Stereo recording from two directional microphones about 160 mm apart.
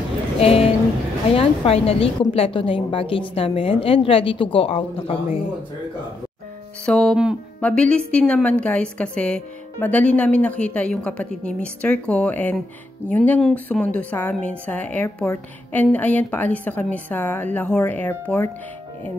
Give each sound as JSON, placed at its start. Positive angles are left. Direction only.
{"t": 0.4, "sound": "a woman's voice", "side_deg": 40}
{"t": 6.9, "sound": "a woman's voice", "side_deg": 5}